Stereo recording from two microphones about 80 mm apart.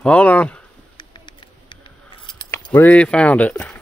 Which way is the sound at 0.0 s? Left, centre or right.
Centre.